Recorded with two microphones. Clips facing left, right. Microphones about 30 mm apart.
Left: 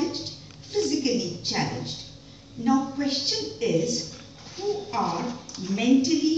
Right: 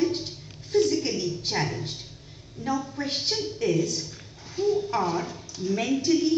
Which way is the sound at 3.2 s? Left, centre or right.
Left.